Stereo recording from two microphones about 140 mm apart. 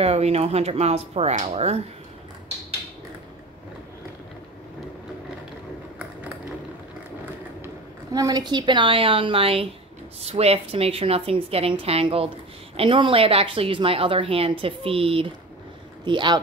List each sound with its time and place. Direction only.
0.0 s a woman's voice: 45° right (ahead or behind)
7.6 s a woman's voice: 25° right (ahead or behind)